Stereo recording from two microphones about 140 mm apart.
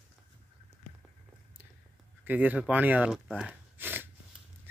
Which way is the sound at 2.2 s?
10° right (ahead or behind).